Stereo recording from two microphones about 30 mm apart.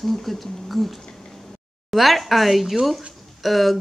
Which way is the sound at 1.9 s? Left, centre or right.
Centre.